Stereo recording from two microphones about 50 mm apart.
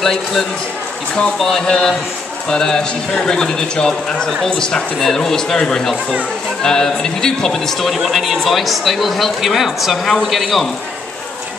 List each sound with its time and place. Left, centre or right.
0.0 s a man's voice: centre